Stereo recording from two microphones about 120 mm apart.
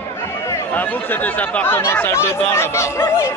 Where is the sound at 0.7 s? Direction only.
15° left (ahead or behind).